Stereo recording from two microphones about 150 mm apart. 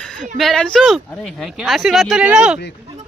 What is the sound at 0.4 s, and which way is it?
Speech, centre (ahead or behind).